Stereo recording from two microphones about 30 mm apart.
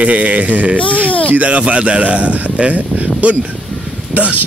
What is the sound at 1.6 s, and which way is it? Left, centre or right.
Speech, right.